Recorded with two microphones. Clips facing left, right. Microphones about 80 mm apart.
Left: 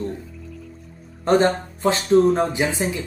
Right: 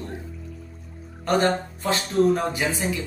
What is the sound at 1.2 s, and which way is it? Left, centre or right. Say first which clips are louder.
Speech: left 4 dB; left.